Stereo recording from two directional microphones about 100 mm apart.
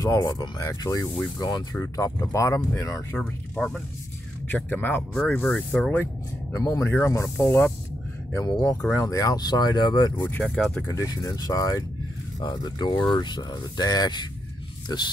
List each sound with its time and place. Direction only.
0.0 s speech: 40° left (ahead or behind)
3.2 s speech: 10° left (ahead or behind)
5.1 s speech: 5° left (ahead or behind)
6.6 s speech: 35° left (ahead or behind)
10.1 s speech: 20° left (ahead or behind)
10.9 s speech: 35° left (ahead or behind)